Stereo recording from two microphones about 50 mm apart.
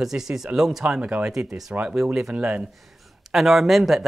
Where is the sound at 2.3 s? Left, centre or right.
Right.